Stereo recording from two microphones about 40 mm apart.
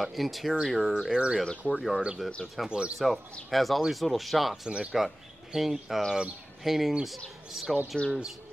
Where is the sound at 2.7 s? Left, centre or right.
Right.